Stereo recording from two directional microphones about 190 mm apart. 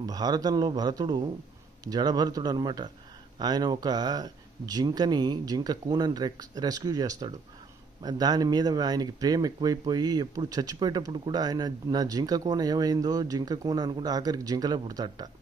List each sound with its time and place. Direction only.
0.0 s speech: 20° right (ahead or behind)